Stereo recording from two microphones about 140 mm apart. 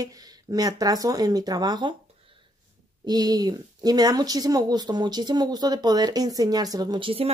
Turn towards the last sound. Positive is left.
turn(degrees=-40)  # may be behind; listen again after turning